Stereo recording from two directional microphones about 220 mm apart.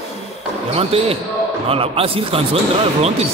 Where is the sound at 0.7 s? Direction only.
25° right (ahead or behind).